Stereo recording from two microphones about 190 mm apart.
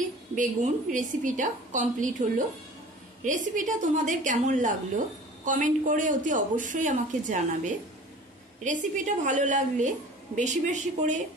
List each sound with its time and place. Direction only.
0.9 s a woman's voice: 40° right (ahead or behind)